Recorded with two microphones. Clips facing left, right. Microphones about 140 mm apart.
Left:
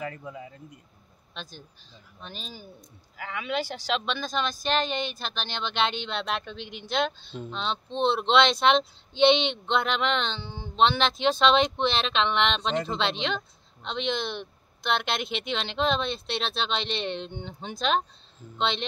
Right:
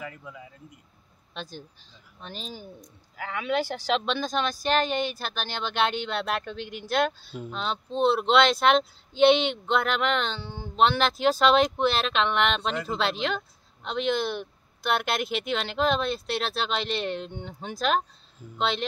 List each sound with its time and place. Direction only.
0.2 s speech: 30° left (ahead or behind)
1.3 s speech: 15° right (ahead or behind)
3.2 s speech: 5° left (ahead or behind)
3.9 s speech: 15° right (ahead or behind)